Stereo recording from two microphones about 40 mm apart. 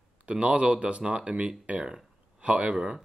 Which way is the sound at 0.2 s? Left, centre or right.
Right.